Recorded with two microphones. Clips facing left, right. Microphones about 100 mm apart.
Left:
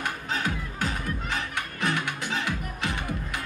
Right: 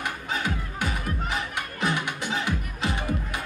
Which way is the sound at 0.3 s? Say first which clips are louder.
Right 1 dB; 10° right (ahead or behind).